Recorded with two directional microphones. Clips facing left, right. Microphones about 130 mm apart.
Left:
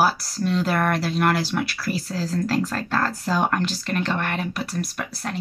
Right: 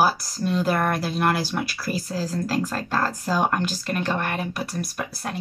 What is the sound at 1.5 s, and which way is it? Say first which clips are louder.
Speech: left 2 dB; 20° right (ahead or behind).